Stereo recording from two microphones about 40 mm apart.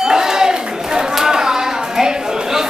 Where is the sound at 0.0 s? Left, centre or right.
Centre.